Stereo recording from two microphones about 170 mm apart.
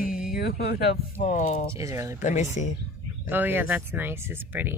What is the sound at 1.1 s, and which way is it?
Speech, 45° left (ahead or behind).